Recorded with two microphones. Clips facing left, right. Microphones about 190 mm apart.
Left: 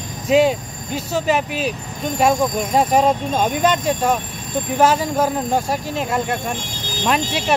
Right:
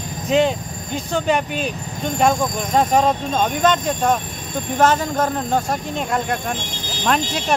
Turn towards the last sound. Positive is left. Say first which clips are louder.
# left 1 dB
turn(degrees=5)  # may be behind; listen again after turning